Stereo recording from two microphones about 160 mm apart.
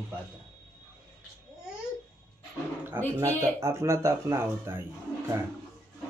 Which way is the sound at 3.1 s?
15° right (ahead or behind).